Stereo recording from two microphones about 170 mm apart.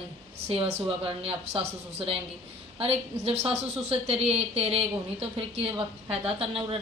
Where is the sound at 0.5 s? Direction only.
35° right (ahead or behind).